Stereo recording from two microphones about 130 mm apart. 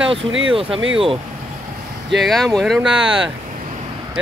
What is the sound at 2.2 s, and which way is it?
Speech, centre (ahead or behind).